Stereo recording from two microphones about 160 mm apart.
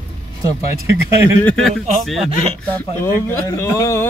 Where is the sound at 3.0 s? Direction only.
15° left (ahead or behind).